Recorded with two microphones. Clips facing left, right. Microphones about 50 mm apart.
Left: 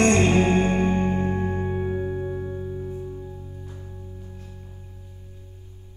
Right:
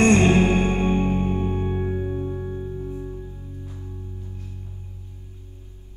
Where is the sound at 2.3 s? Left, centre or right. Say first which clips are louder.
Even; centre.